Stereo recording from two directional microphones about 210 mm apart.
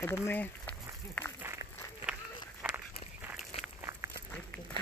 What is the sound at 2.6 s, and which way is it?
Walk, 5° right (ahead or behind).